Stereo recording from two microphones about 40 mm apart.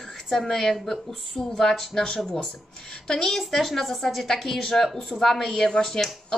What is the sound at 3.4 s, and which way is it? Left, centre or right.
A woman's voice, centre.